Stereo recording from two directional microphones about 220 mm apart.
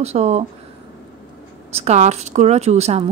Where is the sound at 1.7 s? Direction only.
30° right (ahead or behind).